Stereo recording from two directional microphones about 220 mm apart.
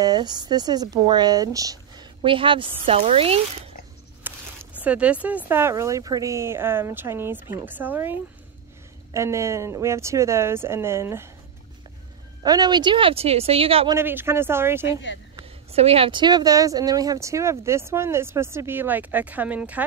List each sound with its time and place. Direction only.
0.0 s speech: 20° right (ahead or behind)
4.2 s a sound: 10° right (ahead or behind)
4.8 s speech: 5° right (ahead or behind)
12.4 s speech: 20° right (ahead or behind)
13.9 s speech: 10° right (ahead or behind)
15.7 s speech: 25° right (ahead or behind); by 19.8 s 5° right (ahead or behind)